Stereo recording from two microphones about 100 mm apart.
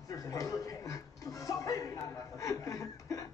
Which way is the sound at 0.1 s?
35° left (ahead or behind).